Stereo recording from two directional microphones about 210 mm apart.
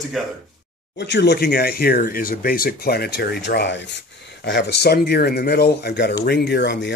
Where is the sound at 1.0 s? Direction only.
55° left (ahead or behind).